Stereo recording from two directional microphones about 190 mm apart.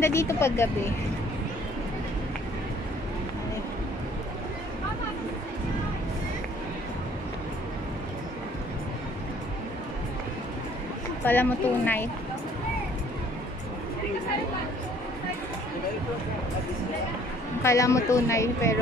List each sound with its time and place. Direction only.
0.0 s a woman's voice: 15° left (ahead or behind)
11.2 s a woman's voice: 10° left (ahead or behind)
17.6 s a woman's voice: 15° left (ahead or behind)